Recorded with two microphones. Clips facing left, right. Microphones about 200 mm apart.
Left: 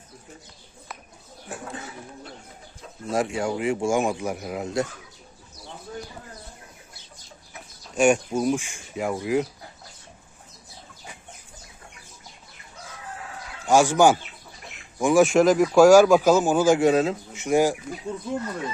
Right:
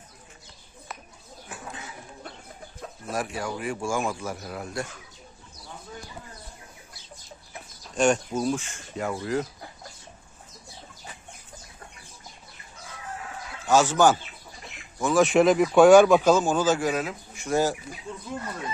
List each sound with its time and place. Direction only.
3.1 s speech: 25° left (ahead or behind)
7.9 s speech: 10° left (ahead or behind)
13.7 s speech: 10° left (ahead or behind)
15.2 s speech: centre (ahead or behind)
16.8 s speech: 30° left (ahead or behind)